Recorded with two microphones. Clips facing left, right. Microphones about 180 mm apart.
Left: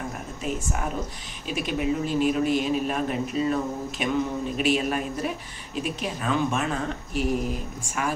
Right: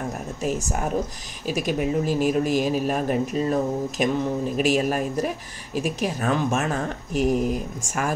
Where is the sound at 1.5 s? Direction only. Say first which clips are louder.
Right 3 dB; 45° right (ahead or behind).